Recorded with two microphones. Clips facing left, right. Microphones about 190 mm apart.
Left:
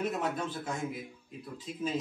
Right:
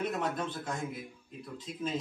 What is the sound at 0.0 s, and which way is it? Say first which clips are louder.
Speech: even; 5° left (ahead or behind).